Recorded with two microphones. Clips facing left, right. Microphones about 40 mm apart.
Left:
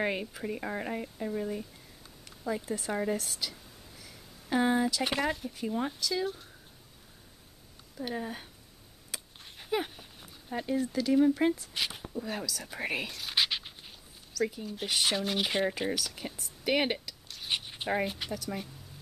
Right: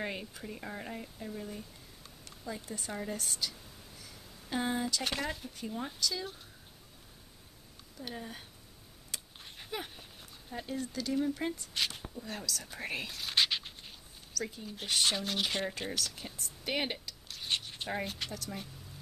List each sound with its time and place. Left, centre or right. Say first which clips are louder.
0.0 s speech: left 7 dB; left
2.6 s speech: left 7 dB; centre
2.9 s speech: left 8 dB; left
3.2 s speech: left 1 dB; centre
8.0 s speech: left 7 dB; centre
9.1 s a sound: left 2 dB; centre
10.6 s speech: left 7 dB; centre
16.7 s speech: left 6 dB; left; by 18.7 s centre